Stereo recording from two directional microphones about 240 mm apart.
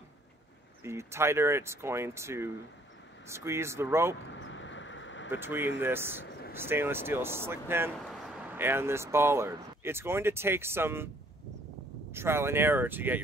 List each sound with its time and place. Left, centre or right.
0.8 s speech: centre
4.3 s vehicle: left
5.3 s speech: centre
12.1 s speech: centre